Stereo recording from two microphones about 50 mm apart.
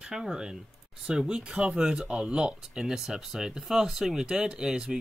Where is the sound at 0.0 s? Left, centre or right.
Centre.